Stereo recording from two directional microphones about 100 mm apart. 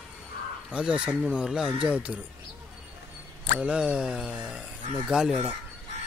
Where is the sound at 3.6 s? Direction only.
10° right (ahead or behind).